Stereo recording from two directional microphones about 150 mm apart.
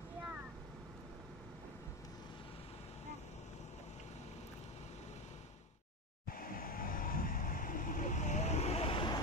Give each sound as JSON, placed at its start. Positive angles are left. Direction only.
{"t": 6.2, "sound": "vehicle", "side_deg": 75}